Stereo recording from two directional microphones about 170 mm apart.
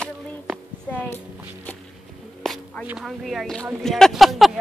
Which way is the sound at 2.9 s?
Centre (ahead or behind).